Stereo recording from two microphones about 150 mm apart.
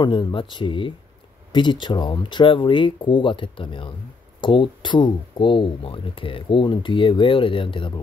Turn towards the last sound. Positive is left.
turn(degrees=35)  # may be behind; listen again after turning